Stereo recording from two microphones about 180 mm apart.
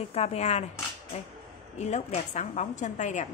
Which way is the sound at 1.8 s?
40° left (ahead or behind).